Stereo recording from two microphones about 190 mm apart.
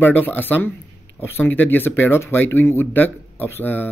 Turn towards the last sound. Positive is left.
turn(degrees=10)  # may be behind; listen again after turning